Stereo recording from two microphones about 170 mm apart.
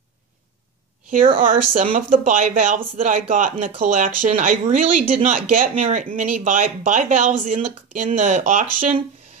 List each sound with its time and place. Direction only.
1.4 s speech: 50° right (ahead or behind)